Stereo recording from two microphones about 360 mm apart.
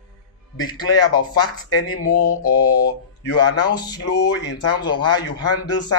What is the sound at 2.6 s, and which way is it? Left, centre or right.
Mantra, left.